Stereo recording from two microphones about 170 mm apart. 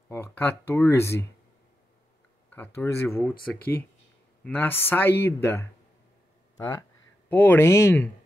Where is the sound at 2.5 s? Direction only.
10° left (ahead or behind).